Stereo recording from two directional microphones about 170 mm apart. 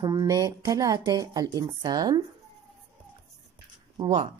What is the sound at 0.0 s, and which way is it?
A woman's voice, 20° right (ahead or behind).